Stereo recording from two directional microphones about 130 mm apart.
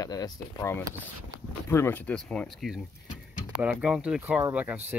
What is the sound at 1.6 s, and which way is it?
Speech, 20° left (ahead or behind).